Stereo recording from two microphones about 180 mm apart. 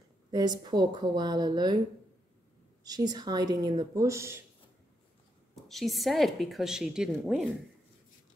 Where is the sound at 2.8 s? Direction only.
20° right (ahead or behind).